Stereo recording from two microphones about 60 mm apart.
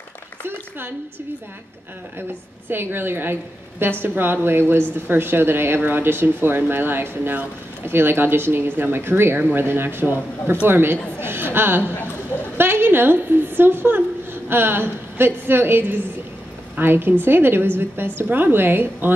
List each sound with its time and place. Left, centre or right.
0.5 s speech: right
2.7 s a woman's voice: right